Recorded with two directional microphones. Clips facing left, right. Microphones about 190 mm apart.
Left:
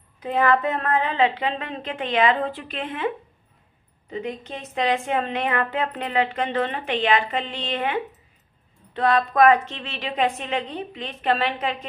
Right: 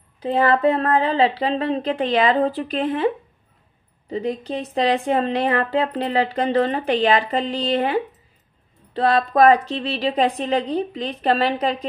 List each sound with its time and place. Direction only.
0.2 s speech: 30° right (ahead or behind)
4.1 s speech: 35° right (ahead or behind)